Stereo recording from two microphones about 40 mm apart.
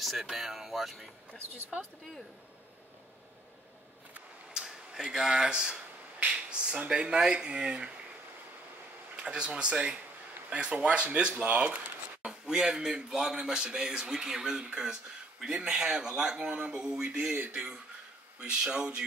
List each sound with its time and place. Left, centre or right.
0.0 s speech: centre
4.6 s speech: centre
9.1 s speech: right
12.3 s speech: centre; by 16.7 s right
16.7 s speech: centre
18.6 s speech: centre